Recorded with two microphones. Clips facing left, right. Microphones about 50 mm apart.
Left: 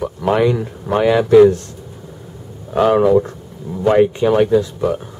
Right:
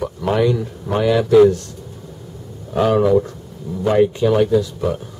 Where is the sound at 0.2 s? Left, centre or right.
Left.